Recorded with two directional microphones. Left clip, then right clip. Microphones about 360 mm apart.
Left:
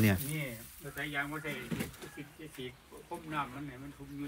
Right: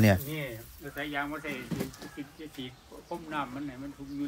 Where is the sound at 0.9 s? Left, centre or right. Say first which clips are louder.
Right 3 dB; right.